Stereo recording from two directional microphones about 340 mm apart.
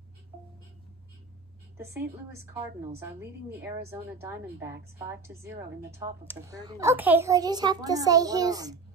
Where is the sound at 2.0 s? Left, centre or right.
Centre.